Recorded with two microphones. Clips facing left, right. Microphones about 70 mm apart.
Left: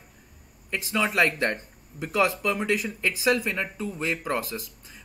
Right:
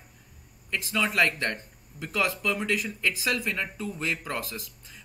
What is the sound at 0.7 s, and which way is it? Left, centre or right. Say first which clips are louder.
Speech: left 2 dB; centre.